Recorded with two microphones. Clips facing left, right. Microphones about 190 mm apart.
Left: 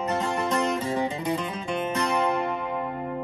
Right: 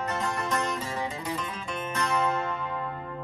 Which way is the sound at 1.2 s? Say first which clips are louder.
Left 6 dB; 25° left (ahead or behind).